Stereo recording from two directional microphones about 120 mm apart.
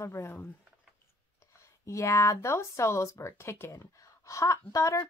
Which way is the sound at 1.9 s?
25° left (ahead or behind).